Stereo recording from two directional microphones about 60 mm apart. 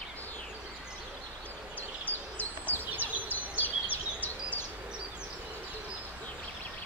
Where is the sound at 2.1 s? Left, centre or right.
Left.